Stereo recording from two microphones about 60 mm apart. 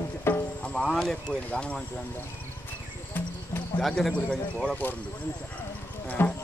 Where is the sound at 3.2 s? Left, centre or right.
Left.